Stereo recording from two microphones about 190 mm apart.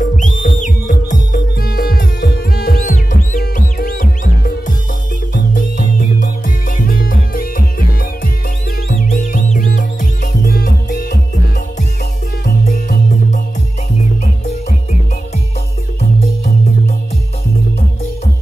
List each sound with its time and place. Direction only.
0.0 s whistle: 40° left (ahead or behind)
1.0 s music: 55° left (ahead or behind)
12.4 s music: 55° left (ahead or behind)